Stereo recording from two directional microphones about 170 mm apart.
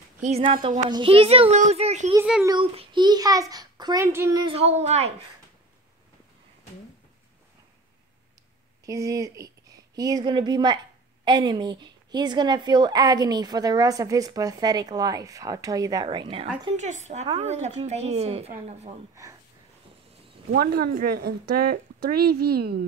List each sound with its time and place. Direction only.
0.2 s speech: 45° right (ahead or behind)
0.5 s a woman's voice: 30° right (ahead or behind)
4.5 s a woman's voice: 40° right (ahead or behind)
8.8 s a woman's voice: 20° right (ahead or behind)
16.7 s a woman's voice: 45° right (ahead or behind)
20.5 s speech: 65° right (ahead or behind)